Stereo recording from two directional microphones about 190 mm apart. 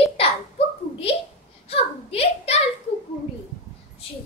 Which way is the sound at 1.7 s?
30° left (ahead or behind).